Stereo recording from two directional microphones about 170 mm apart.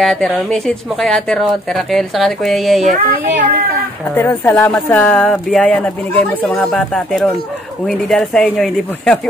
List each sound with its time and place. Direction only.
0.0 s a woman's voice: centre (ahead or behind)
2.8 s speech: 50° right (ahead or behind)
4.1 s a woman's voice: 10° left (ahead or behind)